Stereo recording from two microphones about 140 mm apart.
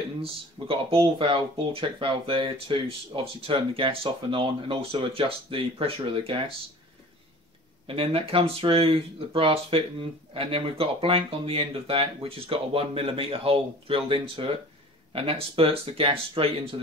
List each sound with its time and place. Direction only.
0.2 s speech: 40° right (ahead or behind)
7.8 s speech: 40° right (ahead or behind)